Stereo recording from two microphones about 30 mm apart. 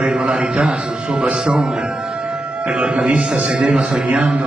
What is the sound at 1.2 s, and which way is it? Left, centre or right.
Speech, right.